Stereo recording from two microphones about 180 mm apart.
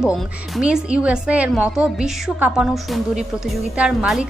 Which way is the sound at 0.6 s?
5° right (ahead or behind).